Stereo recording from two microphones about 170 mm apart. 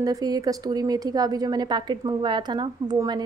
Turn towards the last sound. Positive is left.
turn(degrees=-25)  # may be behind; listen again after turning